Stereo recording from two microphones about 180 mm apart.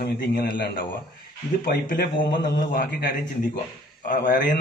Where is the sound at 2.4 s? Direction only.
55° left (ahead or behind).